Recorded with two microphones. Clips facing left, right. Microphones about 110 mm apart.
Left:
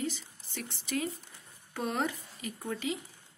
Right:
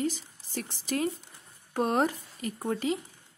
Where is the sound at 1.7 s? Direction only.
45° right (ahead or behind).